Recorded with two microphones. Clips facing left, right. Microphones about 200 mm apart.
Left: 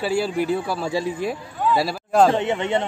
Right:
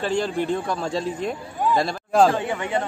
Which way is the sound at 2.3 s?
25° left (ahead or behind).